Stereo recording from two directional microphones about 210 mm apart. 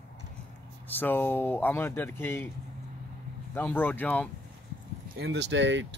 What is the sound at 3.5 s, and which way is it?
Speech, 10° left (ahead or behind).